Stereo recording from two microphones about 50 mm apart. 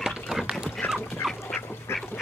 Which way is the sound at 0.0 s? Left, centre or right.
Centre.